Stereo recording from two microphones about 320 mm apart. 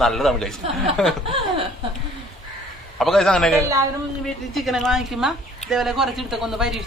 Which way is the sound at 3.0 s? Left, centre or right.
Centre.